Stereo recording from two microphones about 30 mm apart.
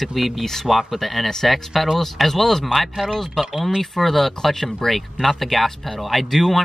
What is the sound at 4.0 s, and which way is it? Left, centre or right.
Speech, centre.